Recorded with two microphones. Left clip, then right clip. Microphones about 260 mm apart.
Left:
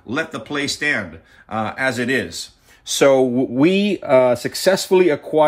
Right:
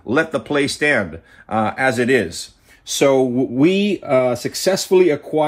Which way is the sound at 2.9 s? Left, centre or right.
Left.